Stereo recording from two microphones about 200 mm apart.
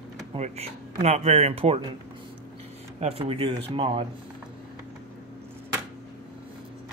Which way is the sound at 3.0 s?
30° right (ahead or behind).